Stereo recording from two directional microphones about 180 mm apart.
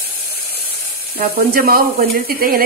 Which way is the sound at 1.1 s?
55° right (ahead or behind).